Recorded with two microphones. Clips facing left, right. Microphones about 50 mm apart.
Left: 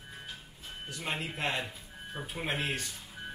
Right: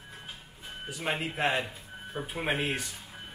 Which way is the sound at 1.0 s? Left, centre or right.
Right.